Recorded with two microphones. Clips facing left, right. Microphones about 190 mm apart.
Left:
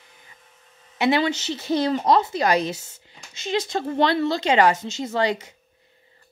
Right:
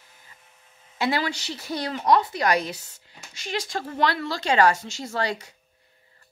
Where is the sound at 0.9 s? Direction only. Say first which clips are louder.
Left 5 dB; 20° left (ahead or behind).